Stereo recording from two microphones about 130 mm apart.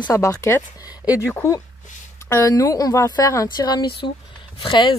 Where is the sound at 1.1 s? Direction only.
10° right (ahead or behind).